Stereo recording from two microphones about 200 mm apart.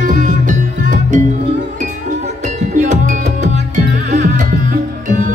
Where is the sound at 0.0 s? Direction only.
40° right (ahead or behind).